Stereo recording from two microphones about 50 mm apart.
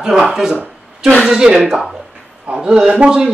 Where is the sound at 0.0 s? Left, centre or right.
Centre.